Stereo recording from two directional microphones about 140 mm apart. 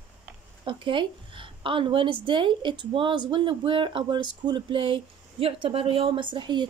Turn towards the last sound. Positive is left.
turn(degrees=-35)  # may be behind; listen again after turning